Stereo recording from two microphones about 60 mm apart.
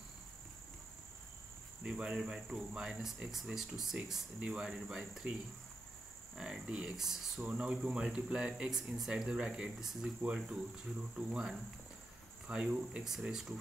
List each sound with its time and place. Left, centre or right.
2.0 s speech: centre
6.3 s cricket: centre
6.7 s speech: centre
7.5 s speech: centre
13.0 s speech: centre